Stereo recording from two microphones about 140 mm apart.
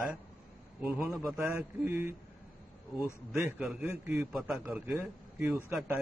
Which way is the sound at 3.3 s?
5° right (ahead or behind).